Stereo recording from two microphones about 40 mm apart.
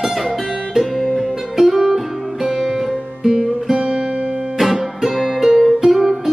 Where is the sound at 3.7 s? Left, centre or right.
Right.